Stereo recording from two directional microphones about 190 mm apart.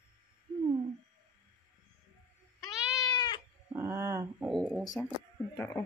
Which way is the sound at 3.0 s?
20° left (ahead or behind).